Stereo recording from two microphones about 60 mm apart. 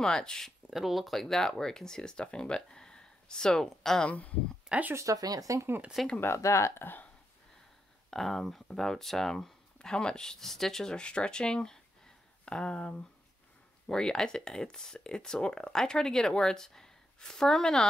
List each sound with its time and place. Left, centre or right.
0.0 s speech: centre
0.7 s speech: centre
4.6 s speech: right
4.9 s speech: right
6.2 s speech: left
8.1 s speech: centre